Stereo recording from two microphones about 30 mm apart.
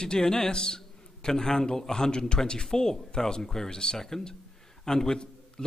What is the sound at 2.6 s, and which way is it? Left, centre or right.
A man's voice, centre.